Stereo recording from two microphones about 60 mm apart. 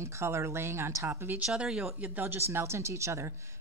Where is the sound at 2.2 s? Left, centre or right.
Right.